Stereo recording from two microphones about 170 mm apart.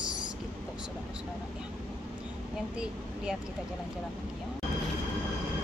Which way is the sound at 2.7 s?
5° right (ahead or behind).